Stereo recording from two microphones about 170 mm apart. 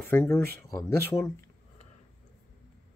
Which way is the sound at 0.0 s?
10° left (ahead or behind).